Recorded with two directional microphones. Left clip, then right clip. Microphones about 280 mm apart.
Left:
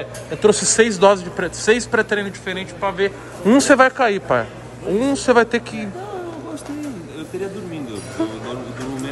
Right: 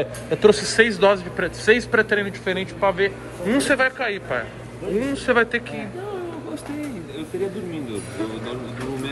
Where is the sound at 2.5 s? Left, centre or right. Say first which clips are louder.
Right 4 dB; centre.